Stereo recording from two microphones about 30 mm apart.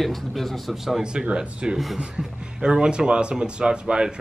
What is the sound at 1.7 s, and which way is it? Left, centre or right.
Speech, centre.